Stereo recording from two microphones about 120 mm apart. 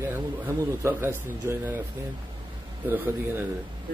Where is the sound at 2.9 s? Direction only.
15° right (ahead or behind).